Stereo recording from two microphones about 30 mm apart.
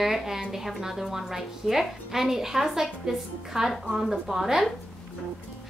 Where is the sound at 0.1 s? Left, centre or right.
Centre.